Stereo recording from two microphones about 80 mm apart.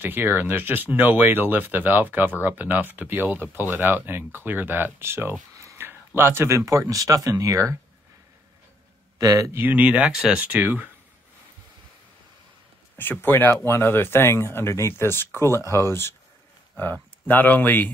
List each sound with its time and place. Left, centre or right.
0.0 s speech: right
5.6 s a sound: right
5.9 s speech: right
9.2 s speech: right
9.5 s speech: right
10.4 s speech: right
12.9 s speech: left
16.7 s speech: left